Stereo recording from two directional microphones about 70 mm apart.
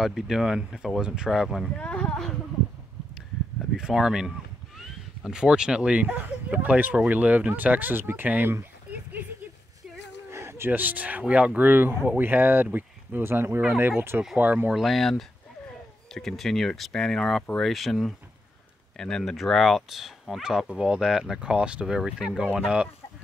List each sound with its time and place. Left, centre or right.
0.0 s speech: centre
1.8 s speech: centre
3.7 s speech: centre; by 9.3 s right
10.3 s a sound: right
10.7 s speech: right
14.7 s speech: centre